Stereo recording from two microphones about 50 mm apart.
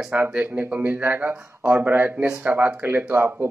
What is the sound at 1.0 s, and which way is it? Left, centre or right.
Speech, right.